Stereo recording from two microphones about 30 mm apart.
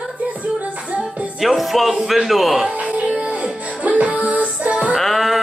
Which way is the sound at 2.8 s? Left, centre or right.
Right.